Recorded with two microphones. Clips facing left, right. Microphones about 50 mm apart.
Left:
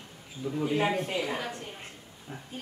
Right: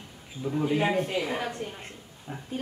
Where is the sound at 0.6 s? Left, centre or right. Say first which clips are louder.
Right 2 dB; centre.